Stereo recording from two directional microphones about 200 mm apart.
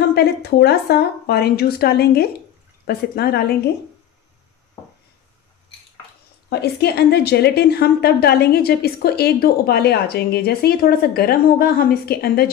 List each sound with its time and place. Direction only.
0.1 s a woman's voice: 55° left (ahead or behind)
6.5 s a woman's voice: 55° left (ahead or behind)